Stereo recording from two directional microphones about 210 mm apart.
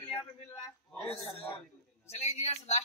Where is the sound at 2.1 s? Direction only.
30° left (ahead or behind).